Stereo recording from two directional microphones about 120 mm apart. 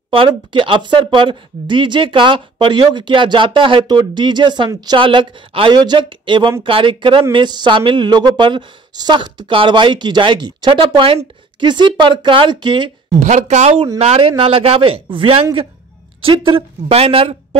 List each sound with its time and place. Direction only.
0.1 s a woman's voice: 45° right (ahead or behind)
13.2 s speech: 80° right
13.9 s speech: 60° right (ahead or behind)